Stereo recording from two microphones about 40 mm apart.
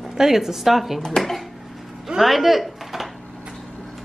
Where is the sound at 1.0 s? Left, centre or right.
Centre.